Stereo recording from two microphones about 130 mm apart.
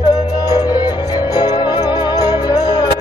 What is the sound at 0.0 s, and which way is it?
Music, 30° left (ahead or behind).